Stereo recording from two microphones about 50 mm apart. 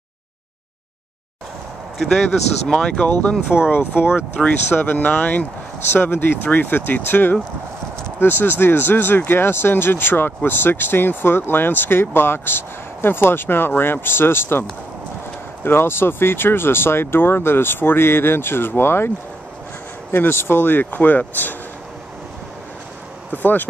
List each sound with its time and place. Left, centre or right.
2.0 s speech: centre
2.2 s speech: centre
3.7 s speech: left
4.9 s speech: left
5.9 s speech: left
15.6 s speech: left
23.3 s speech: left